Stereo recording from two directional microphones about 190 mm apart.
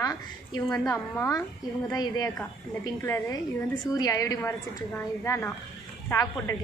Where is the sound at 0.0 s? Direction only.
15° left (ahead or behind).